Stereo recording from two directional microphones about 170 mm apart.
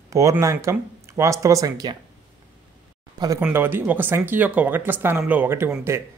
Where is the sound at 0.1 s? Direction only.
20° right (ahead or behind).